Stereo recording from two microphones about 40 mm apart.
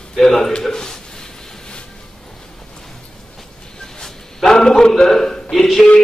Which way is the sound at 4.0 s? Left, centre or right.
Centre.